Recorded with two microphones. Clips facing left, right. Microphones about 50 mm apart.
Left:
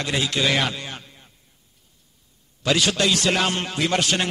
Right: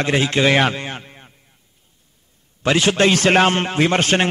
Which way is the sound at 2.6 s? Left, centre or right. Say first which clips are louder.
Right 5 dB; right.